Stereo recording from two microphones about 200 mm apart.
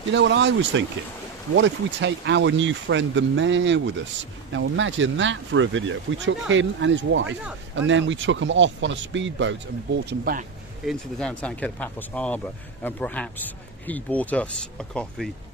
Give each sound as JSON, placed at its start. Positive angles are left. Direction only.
{"t": 0.1, "sound": "speech", "side_deg": -60}
{"t": 10.0, "sound": "speech", "side_deg": -50}
{"t": 10.9, "sound": "speech", "side_deg": 5}